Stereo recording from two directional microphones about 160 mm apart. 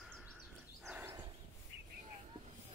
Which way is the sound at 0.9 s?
10° right (ahead or behind).